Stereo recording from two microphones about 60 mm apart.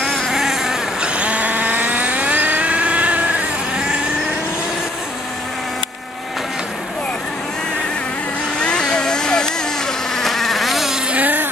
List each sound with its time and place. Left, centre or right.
0.3 s vehicle: centre
1.1 s vehicle: right
8.5 s vehicle: centre
10.1 s insect: centre
11.1 s a sound: right